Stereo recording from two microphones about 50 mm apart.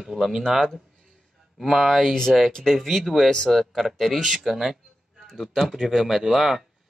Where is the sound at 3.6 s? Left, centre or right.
Centre.